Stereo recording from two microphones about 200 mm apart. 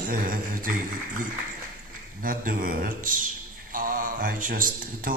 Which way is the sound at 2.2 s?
45° right (ahead or behind).